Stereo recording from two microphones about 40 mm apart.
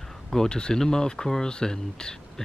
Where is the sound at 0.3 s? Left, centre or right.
Centre.